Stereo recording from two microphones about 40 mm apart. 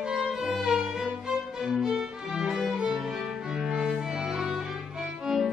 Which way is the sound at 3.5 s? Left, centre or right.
Centre.